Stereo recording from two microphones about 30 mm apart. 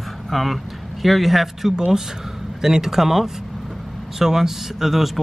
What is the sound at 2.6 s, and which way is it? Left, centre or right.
Speech, centre.